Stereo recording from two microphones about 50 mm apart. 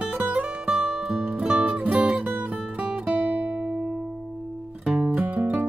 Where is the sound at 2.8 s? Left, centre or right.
Centre; by 5.7 s right.